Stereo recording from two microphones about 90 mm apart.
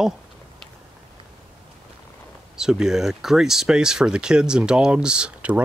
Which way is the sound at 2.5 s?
5° right (ahead or behind).